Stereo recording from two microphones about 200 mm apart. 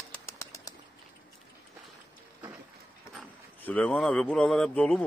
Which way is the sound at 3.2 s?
5° left (ahead or behind).